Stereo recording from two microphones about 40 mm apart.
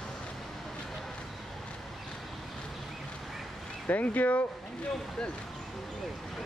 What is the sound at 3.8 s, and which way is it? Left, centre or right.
Speech, left.